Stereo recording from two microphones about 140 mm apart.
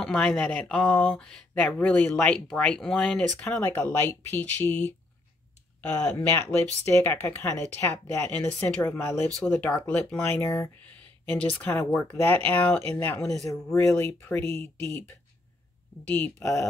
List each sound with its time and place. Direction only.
0.0 s speech: 5° left (ahead or behind)
11.0 s speech: 10° left (ahead or behind)
13.2 s speech: 5° left (ahead or behind)
13.7 s speech: 20° left (ahead or behind)
16.1 s speech: 15° left (ahead or behind)